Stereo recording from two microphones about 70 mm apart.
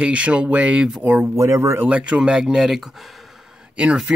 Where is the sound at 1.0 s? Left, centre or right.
Right.